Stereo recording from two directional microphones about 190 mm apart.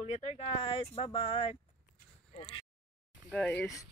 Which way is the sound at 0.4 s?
30° left (ahead or behind).